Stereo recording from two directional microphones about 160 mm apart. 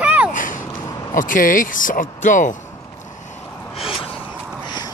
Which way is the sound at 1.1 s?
55° left (ahead or behind).